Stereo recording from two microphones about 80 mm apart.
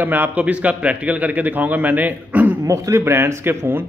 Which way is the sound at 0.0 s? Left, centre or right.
Right.